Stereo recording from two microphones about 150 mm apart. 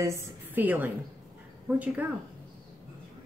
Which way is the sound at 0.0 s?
15° right (ahead or behind).